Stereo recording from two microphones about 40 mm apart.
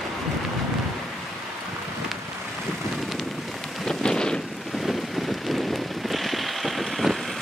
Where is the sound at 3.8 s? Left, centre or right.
Centre.